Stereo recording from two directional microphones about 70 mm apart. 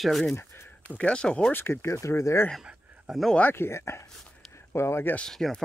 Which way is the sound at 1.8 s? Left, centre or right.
Left.